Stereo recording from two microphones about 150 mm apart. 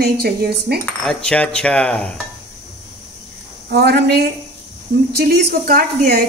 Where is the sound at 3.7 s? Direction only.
90° right.